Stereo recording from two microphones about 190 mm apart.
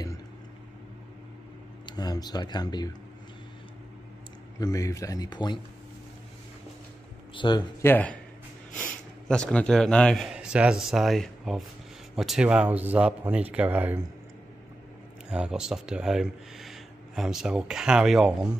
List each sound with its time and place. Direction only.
1.9 s speech: 20° left (ahead or behind)
4.6 s speech: 20° left (ahead or behind)
7.3 s speech: 25° left (ahead or behind)
7.8 s a man's voice: 10° left (ahead or behind); by 14.0 s 10° right (ahead or behind)
15.2 s speech: 5° right (ahead or behind)